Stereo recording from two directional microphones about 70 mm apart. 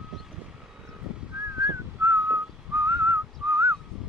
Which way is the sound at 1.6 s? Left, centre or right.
Right.